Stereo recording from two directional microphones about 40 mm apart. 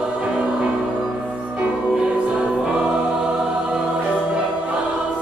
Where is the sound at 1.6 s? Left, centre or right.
Right.